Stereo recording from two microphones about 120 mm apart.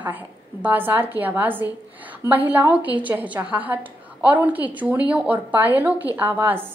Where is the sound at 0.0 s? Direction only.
15° right (ahead or behind).